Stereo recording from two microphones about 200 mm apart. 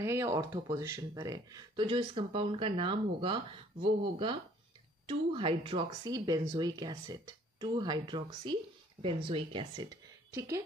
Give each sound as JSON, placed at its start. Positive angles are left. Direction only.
{"t": 0.0, "sound": "speech", "side_deg": -15}